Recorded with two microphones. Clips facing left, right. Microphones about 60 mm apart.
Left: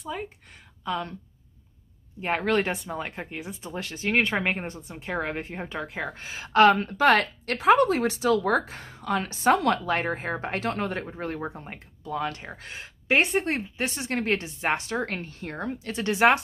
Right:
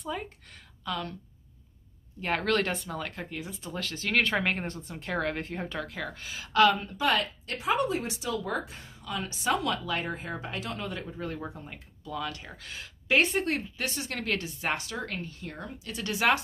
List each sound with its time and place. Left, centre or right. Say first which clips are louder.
0.1 s a woman's voice: left 2 dB; centre
0.8 s speech: left 4 dB; left
2.2 s speech: left 3 dB; centre; by 6.8 s left
6.8 s speech: left 7 dB; left